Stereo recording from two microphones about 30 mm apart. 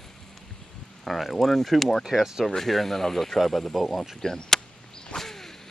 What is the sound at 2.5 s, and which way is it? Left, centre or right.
Speech, centre.